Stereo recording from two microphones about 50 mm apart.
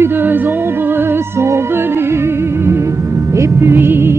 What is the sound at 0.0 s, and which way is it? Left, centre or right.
Music, right.